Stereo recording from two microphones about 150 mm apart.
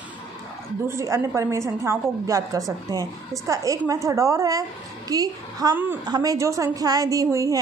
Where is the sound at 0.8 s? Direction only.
20° right (ahead or behind).